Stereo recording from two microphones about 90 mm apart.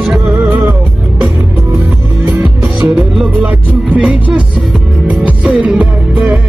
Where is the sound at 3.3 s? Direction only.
15° right (ahead or behind).